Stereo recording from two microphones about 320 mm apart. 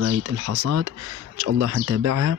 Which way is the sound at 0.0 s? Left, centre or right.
Right.